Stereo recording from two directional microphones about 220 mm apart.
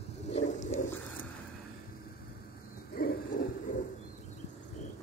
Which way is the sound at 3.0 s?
40° left (ahead or behind).